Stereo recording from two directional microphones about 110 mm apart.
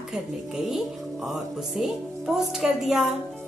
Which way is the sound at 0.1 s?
5° right (ahead or behind).